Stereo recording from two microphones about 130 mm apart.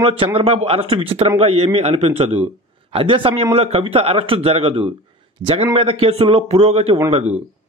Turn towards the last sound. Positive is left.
turn(degrees=-55)  # may be behind; listen again after turning